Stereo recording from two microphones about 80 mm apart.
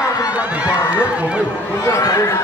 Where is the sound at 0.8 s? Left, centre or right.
Left.